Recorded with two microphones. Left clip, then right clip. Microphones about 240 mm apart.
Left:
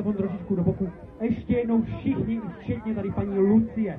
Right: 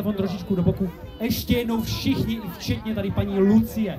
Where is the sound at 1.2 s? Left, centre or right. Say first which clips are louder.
Right 1 dB; right.